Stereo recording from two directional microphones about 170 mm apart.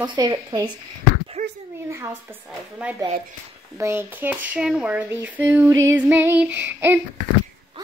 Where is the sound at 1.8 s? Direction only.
15° right (ahead or behind).